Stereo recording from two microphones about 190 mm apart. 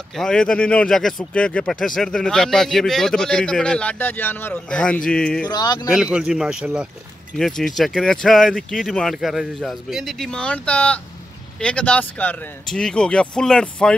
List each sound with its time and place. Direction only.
0.1 s speech: 5° left (ahead or behind)
5.5 s speech: 20° left (ahead or behind)
5.9 s speech: 5° right (ahead or behind)